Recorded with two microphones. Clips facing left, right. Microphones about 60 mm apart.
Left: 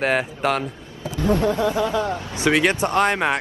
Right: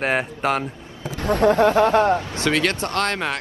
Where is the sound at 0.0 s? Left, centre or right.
Centre.